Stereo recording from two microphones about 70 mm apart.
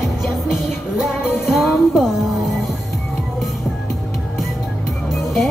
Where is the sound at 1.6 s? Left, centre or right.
Centre.